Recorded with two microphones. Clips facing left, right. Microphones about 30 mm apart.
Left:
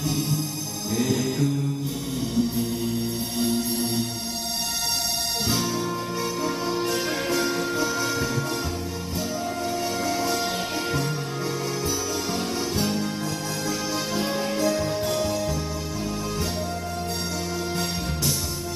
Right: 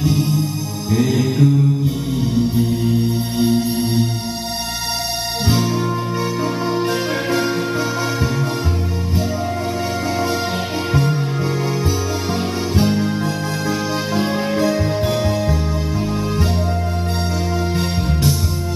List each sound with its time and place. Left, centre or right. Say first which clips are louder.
0.0 s music: right 8 dB; right
2.5 s music: right 8 dB; right
6.4 s music: right 6 dB; right
10.9 s music: right 11 dB; right
12.7 s music: right 8 dB; right